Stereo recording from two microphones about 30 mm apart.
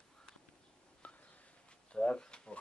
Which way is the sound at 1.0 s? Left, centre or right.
Left.